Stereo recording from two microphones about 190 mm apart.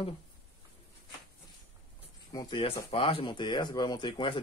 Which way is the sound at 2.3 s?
25° left (ahead or behind).